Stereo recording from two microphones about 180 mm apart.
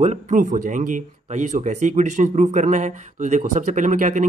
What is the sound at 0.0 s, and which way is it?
Speech, 40° right (ahead or behind).